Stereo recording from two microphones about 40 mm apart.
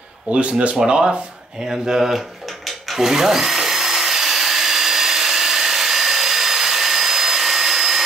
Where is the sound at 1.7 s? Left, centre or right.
Centre.